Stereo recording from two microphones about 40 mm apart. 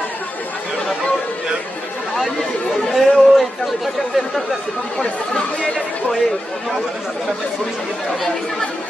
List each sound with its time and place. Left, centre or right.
2.9 s chatter: centre
4.9 s speech: centre